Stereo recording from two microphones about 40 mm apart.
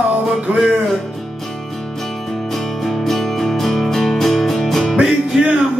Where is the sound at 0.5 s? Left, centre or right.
Right.